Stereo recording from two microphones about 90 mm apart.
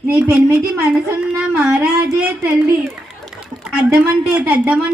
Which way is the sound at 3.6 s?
10° right (ahead or behind).